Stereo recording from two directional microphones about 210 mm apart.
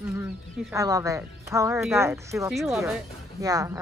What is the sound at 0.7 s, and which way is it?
A woman's voice, 15° right (ahead or behind).